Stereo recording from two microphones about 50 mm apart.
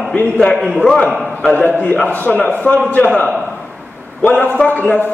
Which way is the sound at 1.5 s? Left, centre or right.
Left.